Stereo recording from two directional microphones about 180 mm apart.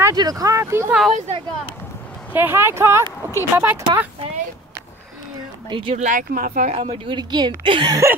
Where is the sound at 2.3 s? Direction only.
10° right (ahead or behind).